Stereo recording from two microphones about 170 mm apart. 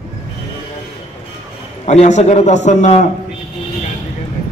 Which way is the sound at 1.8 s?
45° left (ahead or behind).